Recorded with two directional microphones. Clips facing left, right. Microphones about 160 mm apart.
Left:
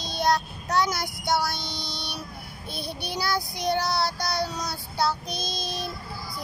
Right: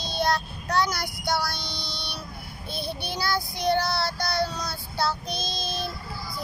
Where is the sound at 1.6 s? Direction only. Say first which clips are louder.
Left 1 dB; 45° left (ahead or behind).